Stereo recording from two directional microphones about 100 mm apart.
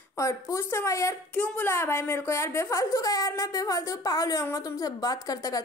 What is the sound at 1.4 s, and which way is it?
Speech, 15° left (ahead or behind).